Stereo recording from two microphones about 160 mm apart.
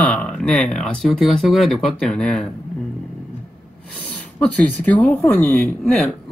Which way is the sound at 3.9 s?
5° left (ahead or behind).